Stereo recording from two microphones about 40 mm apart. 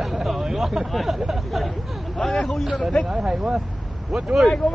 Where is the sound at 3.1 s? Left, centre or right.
Right.